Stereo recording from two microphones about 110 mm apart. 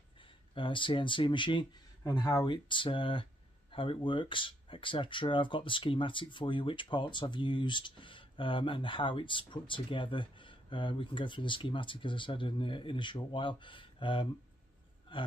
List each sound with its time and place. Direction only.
0.2 s speech: 50° left (ahead or behind)
2.0 s speech: 35° left (ahead or behind)
15.1 s burping: 50° left (ahead or behind)